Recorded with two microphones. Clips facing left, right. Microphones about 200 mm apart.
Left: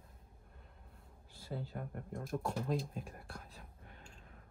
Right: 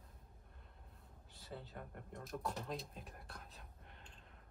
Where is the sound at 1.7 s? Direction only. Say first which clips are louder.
Left 7 dB; 45° left (ahead or behind).